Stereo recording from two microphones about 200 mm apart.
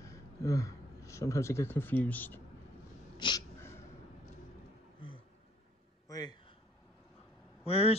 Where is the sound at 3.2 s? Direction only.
20° left (ahead or behind).